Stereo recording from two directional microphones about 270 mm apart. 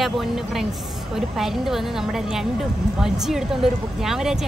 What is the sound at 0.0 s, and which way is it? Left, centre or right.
Speech, centre.